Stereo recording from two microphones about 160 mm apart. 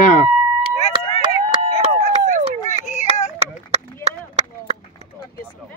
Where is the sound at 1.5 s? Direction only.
45° left (ahead or behind).